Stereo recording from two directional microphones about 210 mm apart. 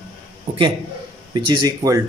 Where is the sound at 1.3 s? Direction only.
20° right (ahead or behind).